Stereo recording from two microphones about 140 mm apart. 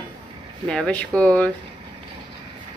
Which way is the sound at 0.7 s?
10° left (ahead or behind).